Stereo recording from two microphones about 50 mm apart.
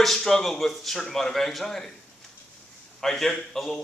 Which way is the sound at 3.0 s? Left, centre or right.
Centre.